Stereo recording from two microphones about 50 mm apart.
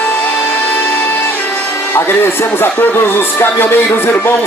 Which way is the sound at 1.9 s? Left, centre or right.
Left.